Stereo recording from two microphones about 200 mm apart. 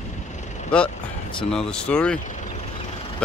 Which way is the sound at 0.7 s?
5° left (ahead or behind).